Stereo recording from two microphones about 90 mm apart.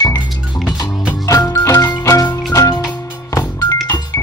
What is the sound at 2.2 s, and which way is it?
Music, 40° left (ahead or behind).